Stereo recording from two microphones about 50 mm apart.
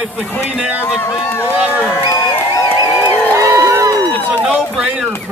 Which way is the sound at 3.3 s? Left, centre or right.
Right.